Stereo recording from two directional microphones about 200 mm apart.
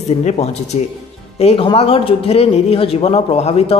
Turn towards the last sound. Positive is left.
turn(degrees=30)  # may be behind; listen again after turning